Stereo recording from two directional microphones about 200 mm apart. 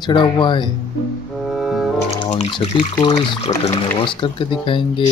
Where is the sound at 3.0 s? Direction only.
25° left (ahead or behind).